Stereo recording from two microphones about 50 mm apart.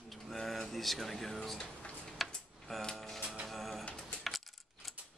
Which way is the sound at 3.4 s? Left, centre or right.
Centre.